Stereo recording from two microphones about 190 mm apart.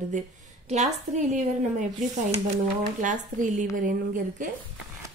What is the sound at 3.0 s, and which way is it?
A woman's voice, 40° right (ahead or behind).